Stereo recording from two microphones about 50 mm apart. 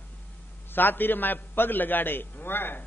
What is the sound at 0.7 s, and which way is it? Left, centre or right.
A man's voice, left.